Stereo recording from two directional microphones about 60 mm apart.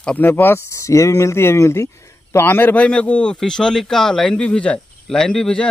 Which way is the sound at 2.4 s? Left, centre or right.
Left.